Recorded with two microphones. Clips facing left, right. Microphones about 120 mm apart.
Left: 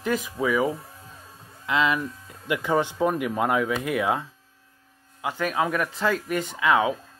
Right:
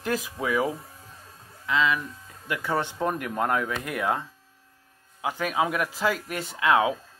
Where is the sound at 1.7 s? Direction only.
25° left (ahead or behind).